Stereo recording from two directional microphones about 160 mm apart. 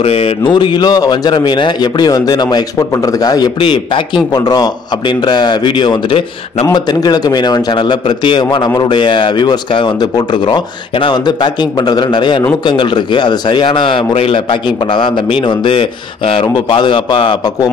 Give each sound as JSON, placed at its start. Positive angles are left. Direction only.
{"t": 0.0, "sound": "a man's voice", "side_deg": 40}